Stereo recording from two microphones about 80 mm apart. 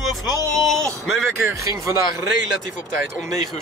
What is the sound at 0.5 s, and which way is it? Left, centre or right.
Speech, centre.